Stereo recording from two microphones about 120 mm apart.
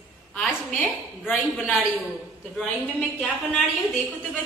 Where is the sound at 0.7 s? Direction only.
15° left (ahead or behind).